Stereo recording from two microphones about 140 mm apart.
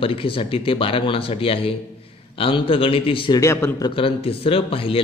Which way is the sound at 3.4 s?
20° left (ahead or behind).